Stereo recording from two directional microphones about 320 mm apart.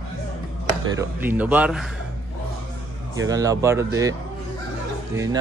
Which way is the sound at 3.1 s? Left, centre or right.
Centre.